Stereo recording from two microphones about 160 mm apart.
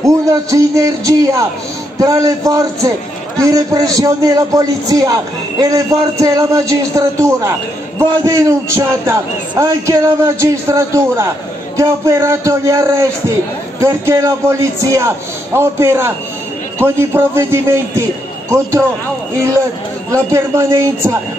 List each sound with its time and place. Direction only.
0.0 s a man's voice: 20° right (ahead or behind)
20.1 s a man's voice: 15° right (ahead or behind)